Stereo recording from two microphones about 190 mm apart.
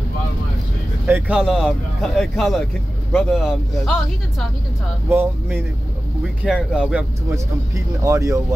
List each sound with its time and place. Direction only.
1.0 s speech: 10° right (ahead or behind)
5.1 s speech: 10° right (ahead or behind)
7.3 s speech: 15° right (ahead or behind)